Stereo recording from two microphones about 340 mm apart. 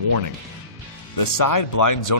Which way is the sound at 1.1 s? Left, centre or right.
Left.